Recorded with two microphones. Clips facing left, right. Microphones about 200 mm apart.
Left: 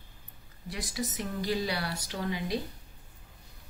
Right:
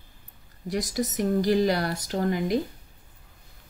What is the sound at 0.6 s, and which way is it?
A woman's voice, 40° right (ahead or behind).